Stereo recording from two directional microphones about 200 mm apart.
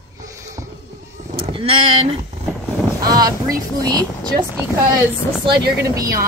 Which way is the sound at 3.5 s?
20° right (ahead or behind).